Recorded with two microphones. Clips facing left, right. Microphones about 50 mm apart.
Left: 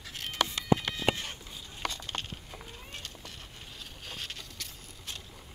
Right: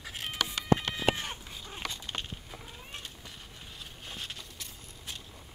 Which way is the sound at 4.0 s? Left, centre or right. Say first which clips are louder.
Left 1 dB; centre.